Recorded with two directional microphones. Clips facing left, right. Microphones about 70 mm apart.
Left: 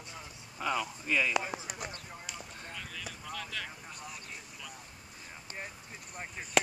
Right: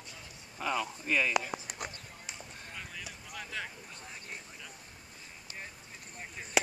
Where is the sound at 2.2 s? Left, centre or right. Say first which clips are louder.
Left 2 dB; right.